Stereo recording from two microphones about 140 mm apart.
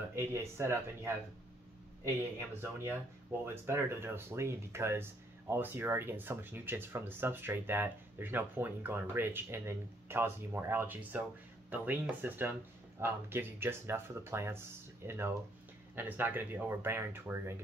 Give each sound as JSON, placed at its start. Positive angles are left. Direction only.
{"t": 0.1, "sound": "speech", "side_deg": -20}
{"t": 2.5, "sound": "speech", "side_deg": -15}